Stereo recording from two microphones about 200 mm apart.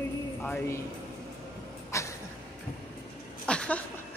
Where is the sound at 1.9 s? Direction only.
15° left (ahead or behind).